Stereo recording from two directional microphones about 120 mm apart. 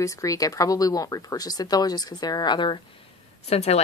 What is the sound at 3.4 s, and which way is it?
Speech, 60° left (ahead or behind).